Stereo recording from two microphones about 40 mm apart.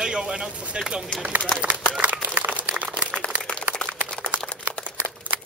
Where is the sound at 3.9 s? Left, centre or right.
Right.